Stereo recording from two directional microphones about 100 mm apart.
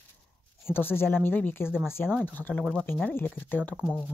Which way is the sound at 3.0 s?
20° left (ahead or behind).